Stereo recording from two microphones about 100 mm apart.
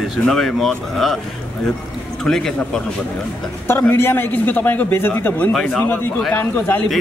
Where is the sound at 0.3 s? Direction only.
5° left (ahead or behind).